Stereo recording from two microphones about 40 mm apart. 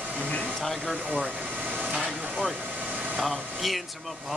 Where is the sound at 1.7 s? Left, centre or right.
Right.